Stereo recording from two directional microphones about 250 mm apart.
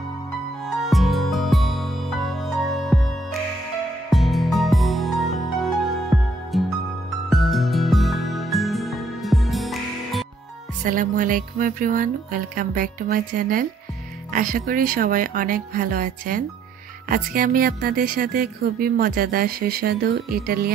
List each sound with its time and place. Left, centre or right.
0.7 s music: centre
6.5 s music: centre
10.8 s a woman's voice: right